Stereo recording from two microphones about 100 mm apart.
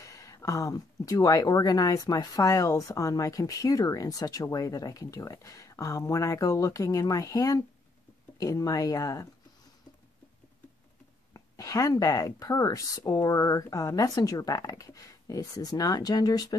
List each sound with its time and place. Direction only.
0.0 s speech: 35° left (ahead or behind)
11.3 s speech: 35° left (ahead or behind)